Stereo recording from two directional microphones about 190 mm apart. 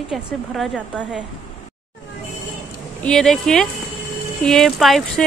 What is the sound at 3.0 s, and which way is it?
A woman's voice, 5° left (ahead or behind).